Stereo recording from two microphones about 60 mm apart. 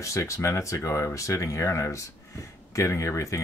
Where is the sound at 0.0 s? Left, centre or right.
Left.